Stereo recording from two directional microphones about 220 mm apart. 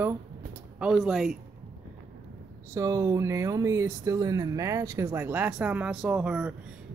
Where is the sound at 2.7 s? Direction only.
15° right (ahead or behind).